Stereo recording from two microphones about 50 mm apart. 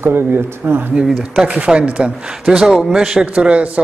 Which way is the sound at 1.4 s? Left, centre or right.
Right.